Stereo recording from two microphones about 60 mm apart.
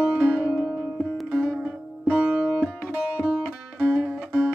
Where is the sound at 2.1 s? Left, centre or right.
Centre.